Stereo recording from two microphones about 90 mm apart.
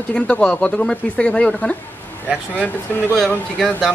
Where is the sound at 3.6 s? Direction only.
5° left (ahead or behind).